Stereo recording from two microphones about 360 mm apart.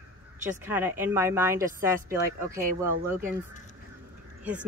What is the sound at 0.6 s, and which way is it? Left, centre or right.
Speech, centre.